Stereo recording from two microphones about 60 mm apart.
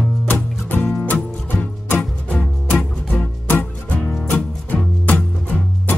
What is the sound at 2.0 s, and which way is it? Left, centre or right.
Music, left.